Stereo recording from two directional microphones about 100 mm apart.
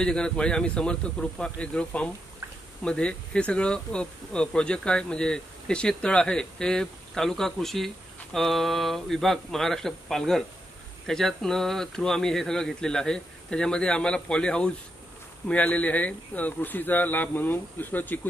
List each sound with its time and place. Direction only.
0.0 s speech: 10° left (ahead or behind)